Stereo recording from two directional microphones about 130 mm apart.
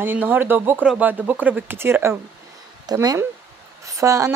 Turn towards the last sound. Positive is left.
turn(degrees=-25)  # may be behind; listen again after turning